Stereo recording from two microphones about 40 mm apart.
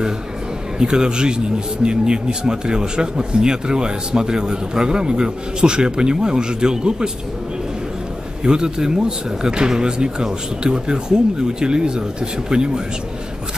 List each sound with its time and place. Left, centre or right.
0.7 s speech: right
8.5 s speech: centre